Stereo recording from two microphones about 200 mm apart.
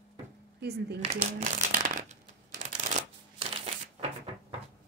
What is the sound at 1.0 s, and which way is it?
Shuffling cards, 35° right (ahead or behind).